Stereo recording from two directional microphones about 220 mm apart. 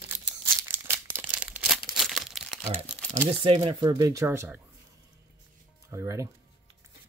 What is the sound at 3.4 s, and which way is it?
Speech, 25° right (ahead or behind).